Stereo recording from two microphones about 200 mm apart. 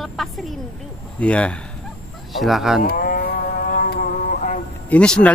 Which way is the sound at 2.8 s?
45° left (ahead or behind).